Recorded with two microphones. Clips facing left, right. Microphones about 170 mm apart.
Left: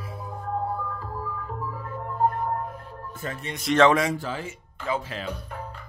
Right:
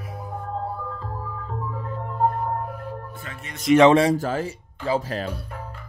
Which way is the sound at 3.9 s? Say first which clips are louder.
Right 7 dB; 30° right (ahead or behind).